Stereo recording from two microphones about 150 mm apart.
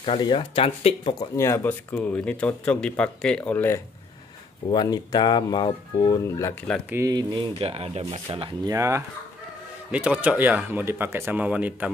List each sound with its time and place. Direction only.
0.0 s speech: 35° left (ahead or behind)
1.3 s speech: 20° left (ahead or behind)
4.6 s speech: 30° left (ahead or behind)
6.9 s speech: 20° right (ahead or behind); by 8.5 s 40° right (ahead or behind)
8.6 s speech: 20° right (ahead or behind)
9.8 s speech: 10° right (ahead or behind)